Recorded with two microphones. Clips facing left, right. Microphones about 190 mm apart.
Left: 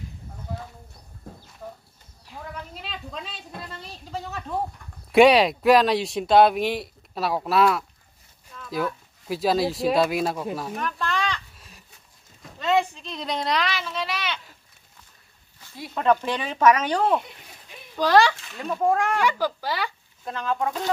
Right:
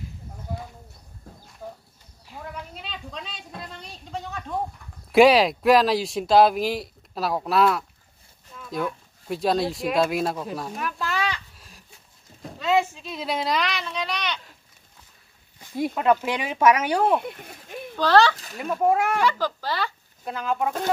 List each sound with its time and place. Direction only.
1.6 s horse: 10° right (ahead or behind)
2.7 s speech: centre (ahead or behind)
15.9 s speech: 10° right (ahead or behind)
17.2 s a sound: 55° right (ahead or behind)
17.9 s speech: 10° left (ahead or behind)
18.3 s a sound: 40° right (ahead or behind)
18.6 s speech: 5° right (ahead or behind)
19.2 s speech: 10° left (ahead or behind)
20.2 s speech: 10° right (ahead or behind)